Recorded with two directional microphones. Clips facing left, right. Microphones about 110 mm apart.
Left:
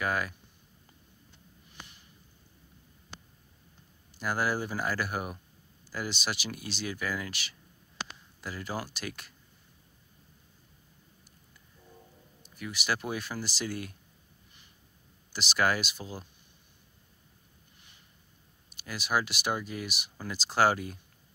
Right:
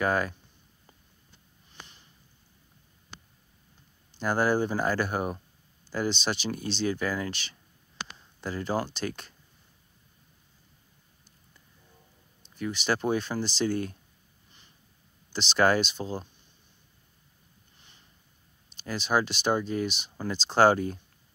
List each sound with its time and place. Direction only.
0.0 s speech: 30° right (ahead or behind)
1.7 s a sound: 25° right (ahead or behind)
4.2 s speech: 30° right (ahead or behind)
12.5 s speech: 30° right (ahead or behind)
15.3 s speech: 30° right (ahead or behind)
18.9 s speech: 25° right (ahead or behind)